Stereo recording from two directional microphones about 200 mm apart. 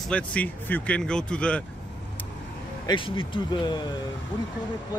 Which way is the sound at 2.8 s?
25° left (ahead or behind).